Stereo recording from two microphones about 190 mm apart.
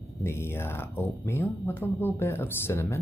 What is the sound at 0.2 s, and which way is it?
Speech, 15° left (ahead or behind).